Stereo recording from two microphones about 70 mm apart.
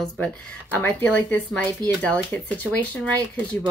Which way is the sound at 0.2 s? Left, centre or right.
Centre.